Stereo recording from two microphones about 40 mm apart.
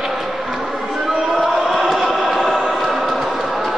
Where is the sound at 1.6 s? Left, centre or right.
Centre.